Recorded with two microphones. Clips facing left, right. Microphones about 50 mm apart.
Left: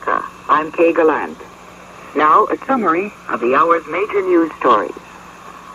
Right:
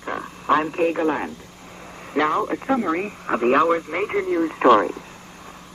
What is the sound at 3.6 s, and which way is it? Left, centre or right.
Speech, left.